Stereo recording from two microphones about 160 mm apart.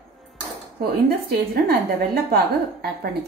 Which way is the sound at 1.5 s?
75° right (ahead or behind).